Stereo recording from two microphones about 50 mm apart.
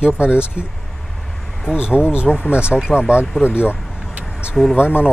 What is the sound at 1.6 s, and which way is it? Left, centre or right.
Speech, centre.